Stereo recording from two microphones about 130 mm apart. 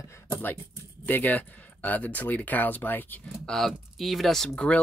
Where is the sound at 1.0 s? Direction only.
15° left (ahead or behind).